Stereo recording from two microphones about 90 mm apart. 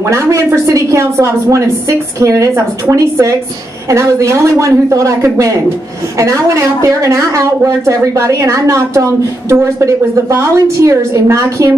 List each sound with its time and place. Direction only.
0.1 s a woman's voice: 30° right (ahead or behind)